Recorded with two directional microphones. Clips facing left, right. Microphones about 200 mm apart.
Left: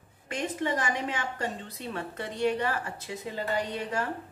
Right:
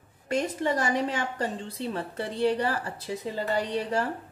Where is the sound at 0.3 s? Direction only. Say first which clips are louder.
Right 4 dB; 40° right (ahead or behind).